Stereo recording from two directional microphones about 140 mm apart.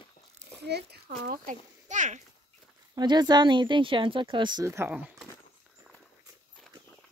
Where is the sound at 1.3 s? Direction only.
65° right (ahead or behind).